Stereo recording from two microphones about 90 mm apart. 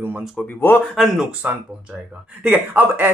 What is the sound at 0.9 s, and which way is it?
Speech, 5° right (ahead or behind).